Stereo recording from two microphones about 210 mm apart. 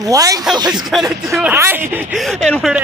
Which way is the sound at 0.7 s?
Centre (ahead or behind).